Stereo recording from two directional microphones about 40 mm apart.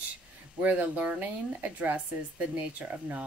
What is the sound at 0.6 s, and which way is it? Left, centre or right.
Speech, right.